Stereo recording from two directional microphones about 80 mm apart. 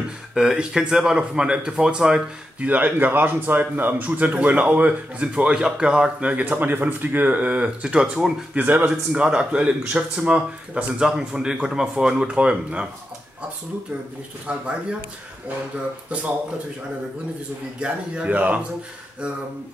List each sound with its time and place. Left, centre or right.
0.3 s speech: centre
8.6 s a man's voice: right
9.1 s speech: centre
14.5 s speech: centre
17.7 s speech: centre